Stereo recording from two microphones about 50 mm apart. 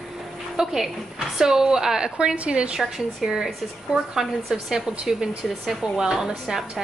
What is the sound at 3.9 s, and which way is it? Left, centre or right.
Speech, right.